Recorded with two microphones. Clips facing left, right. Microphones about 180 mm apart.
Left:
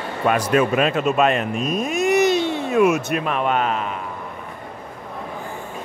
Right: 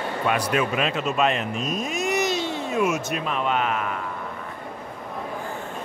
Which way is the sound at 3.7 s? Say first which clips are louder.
Left 2 dB; 25° left (ahead or behind).